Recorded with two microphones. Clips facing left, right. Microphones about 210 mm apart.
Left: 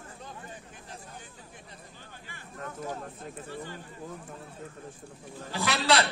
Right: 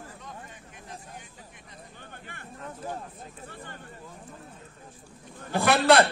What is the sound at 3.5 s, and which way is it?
Speech, 55° right (ahead or behind).